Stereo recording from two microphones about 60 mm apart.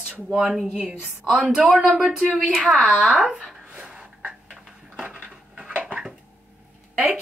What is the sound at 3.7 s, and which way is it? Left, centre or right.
Gasp, right.